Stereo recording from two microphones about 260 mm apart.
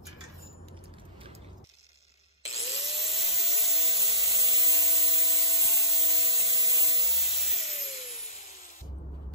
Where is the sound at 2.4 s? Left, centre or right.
Left.